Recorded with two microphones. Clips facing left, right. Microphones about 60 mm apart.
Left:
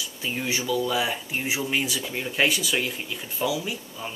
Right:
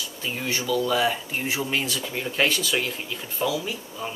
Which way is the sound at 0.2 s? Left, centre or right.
Centre.